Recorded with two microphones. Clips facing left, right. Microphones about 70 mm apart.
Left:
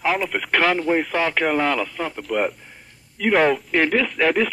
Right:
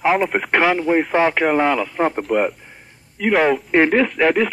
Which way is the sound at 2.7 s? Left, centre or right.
Centre.